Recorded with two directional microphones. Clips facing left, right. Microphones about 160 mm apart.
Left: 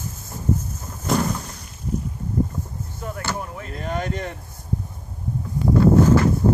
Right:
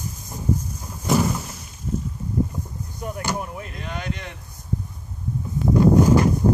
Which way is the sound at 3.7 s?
40° left (ahead or behind).